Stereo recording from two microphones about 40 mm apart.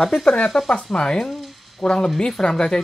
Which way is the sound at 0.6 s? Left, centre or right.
Left.